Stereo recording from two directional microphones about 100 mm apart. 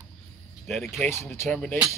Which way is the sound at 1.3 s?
25° left (ahead or behind).